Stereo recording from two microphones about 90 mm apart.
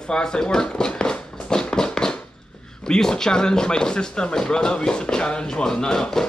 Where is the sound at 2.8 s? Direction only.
10° left (ahead or behind).